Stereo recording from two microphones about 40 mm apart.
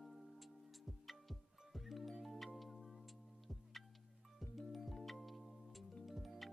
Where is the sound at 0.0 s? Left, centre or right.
Centre.